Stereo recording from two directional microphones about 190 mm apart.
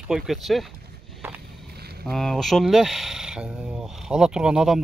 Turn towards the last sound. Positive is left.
turn(degrees=-5)  # may be behind; listen again after turning